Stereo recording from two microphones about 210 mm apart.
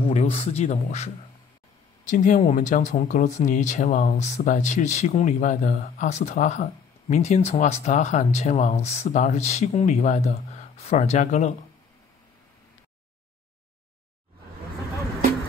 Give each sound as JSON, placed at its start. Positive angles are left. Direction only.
{"t": 0.0, "sound": "a man's voice", "side_deg": 30}